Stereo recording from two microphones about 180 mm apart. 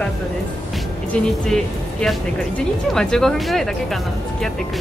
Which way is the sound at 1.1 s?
5° left (ahead or behind).